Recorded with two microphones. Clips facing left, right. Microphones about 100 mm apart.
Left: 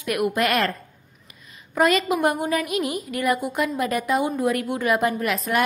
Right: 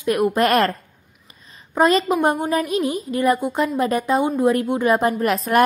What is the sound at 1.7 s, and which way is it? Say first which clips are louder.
A woman's voice: right 3 dB; 30° right (ahead or behind).